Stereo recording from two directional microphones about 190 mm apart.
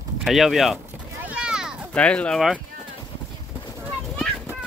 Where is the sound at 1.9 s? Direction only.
5° left (ahead or behind).